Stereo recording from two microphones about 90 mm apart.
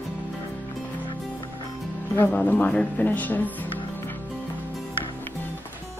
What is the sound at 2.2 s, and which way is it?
Speech, 20° left (ahead or behind).